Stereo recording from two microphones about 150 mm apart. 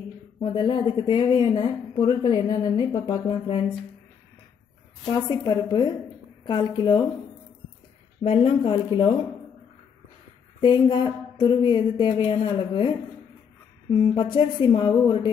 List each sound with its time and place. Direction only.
0.4 s speech: 35° left (ahead or behind)
5.1 s a woman's voice: 25° left (ahead or behind)
8.2 s speech: 40° left (ahead or behind)
10.6 s speech: 30° left (ahead or behind)